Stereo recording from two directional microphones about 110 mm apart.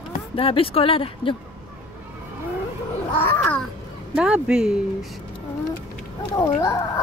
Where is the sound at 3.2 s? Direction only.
15° left (ahead or behind).